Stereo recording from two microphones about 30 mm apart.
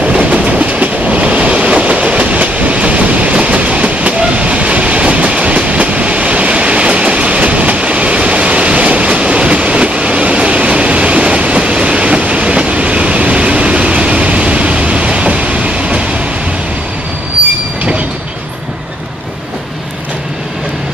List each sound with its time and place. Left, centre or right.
0.2 s train: right